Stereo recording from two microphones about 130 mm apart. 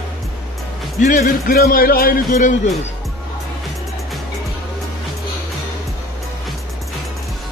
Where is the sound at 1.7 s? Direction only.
80° left.